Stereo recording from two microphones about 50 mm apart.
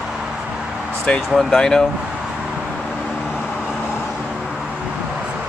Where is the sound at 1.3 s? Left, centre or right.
Centre.